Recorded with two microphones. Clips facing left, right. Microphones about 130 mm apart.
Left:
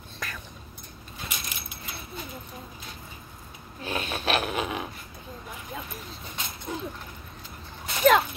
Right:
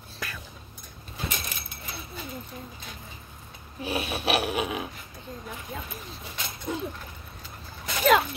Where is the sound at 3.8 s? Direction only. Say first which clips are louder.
Right 1 dB; 10° right (ahead or behind).